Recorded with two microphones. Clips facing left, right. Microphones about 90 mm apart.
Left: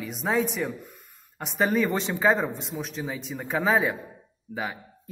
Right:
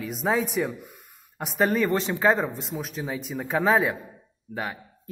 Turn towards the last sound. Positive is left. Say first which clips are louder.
# even
turn(degrees=0)  # may be behind; listen again after turning